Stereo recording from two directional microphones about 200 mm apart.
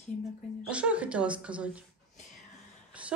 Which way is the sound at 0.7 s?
5° right (ahead or behind).